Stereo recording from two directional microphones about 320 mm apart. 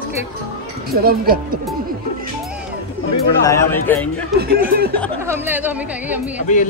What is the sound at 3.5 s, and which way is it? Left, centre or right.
Speech, centre.